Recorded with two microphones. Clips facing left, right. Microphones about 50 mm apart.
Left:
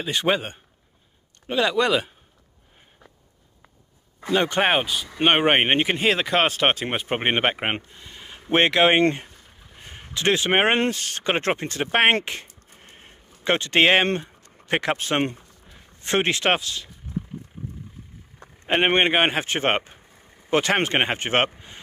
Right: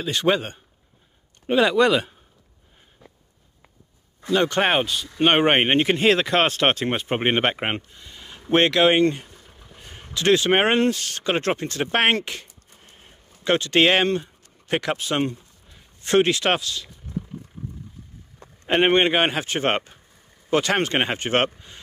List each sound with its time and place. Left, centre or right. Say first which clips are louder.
0.0 s a man's voice: right 1 dB; centre
1.5 s speech: right 4 dB; centre
1.8 s speech: right 3 dB; centre
4.3 s speech: even; centre
9.3 s a sound: right 2 dB; centre
9.8 s a sound: left 1 dB; centre
10.1 s a man's voice: right 2 dB; left
12.8 s a sound: left 2 dB; left
13.4 s a man's voice: right 1 dB; left
14.0 s speech: right 2 dB; left
15.6 s a sound: left 1 dB; left
18.7 s a man's voice: right 1 dB; centre